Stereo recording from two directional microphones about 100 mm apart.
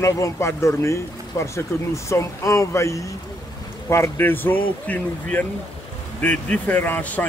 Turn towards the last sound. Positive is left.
turn(degrees=15)  # may be behind; listen again after turning